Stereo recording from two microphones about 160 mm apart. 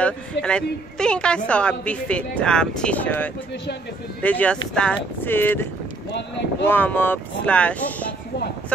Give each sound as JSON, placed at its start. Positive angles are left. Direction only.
{"t": 0.0, "sound": "a woman's voice", "side_deg": 5}